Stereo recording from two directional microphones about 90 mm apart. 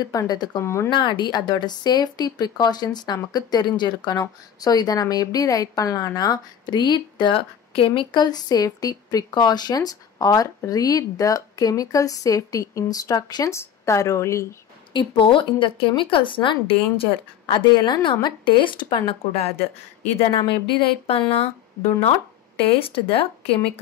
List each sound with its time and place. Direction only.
0.0 s speech: 40° left (ahead or behind)
0.6 s a woman's voice: 30° left (ahead or behind)
0.8 s speech: 60° left (ahead or behind)
4.2 s speech: 45° left (ahead or behind)
13.5 s a woman's voice: 35° left (ahead or behind)
14.9 s a woman's voice: 65° left (ahead or behind)
20.2 s speech: 90° left
22.6 s speech: 90° left